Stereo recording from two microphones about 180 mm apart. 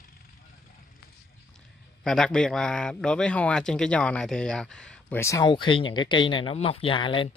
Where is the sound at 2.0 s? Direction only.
5° left (ahead or behind).